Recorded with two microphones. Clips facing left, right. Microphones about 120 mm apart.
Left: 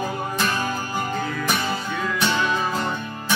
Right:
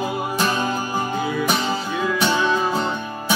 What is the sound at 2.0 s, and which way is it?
Music, 10° right (ahead or behind).